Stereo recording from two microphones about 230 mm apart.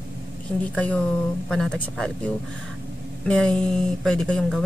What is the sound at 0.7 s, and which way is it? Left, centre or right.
Speech, centre.